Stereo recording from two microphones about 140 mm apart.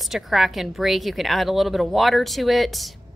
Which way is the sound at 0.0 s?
Centre (ahead or behind).